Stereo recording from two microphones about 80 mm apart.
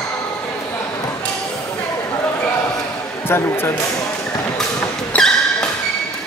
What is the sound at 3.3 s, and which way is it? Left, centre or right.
Speech, left.